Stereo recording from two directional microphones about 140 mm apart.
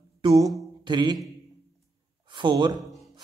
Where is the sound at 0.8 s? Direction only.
35° right (ahead or behind).